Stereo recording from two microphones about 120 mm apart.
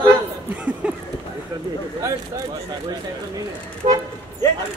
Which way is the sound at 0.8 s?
10° right (ahead or behind).